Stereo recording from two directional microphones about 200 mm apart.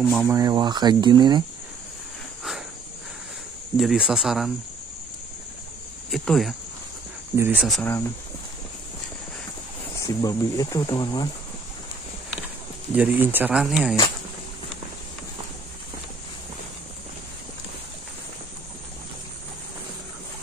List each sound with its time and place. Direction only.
0.0 s speech: 5° left (ahead or behind)
0.3 s speech: 20° right (ahead or behind)
3.7 s speech: 5° right (ahead or behind)
6.0 s speech: centre (ahead or behind)
7.3 s speech: 10° right (ahead or behind)
7.6 s speech: centre (ahead or behind)
9.9 s speech: 15° left (ahead or behind)
12.9 s speech: 10° right (ahead or behind)